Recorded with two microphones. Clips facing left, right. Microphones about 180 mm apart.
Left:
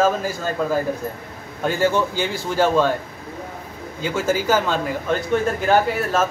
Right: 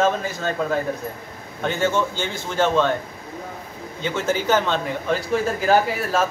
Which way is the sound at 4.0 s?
10° left (ahead or behind).